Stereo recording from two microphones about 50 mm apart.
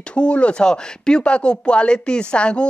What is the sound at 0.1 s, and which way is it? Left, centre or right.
Speech, left.